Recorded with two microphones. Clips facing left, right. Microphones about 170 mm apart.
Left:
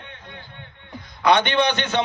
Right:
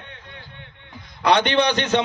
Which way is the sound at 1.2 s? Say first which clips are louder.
Even; 35° right (ahead or behind).